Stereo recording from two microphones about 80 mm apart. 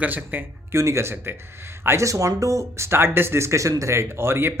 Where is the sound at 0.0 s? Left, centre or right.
Right.